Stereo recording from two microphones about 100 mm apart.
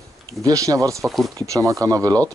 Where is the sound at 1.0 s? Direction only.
Centre (ahead or behind).